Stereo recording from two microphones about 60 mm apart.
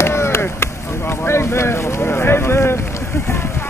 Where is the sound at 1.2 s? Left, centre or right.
Left.